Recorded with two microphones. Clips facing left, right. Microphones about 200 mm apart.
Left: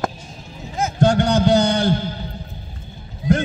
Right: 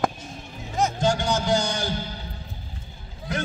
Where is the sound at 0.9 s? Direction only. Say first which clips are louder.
Left 12 dB; 60° left (ahead or behind).